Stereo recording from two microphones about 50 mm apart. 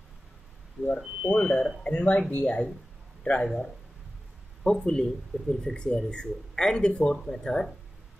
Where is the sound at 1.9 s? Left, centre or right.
Left.